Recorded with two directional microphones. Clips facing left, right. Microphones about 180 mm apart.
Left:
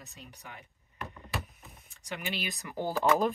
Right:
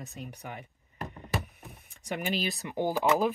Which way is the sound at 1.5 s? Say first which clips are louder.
Right 5 dB; 60° right (ahead or behind).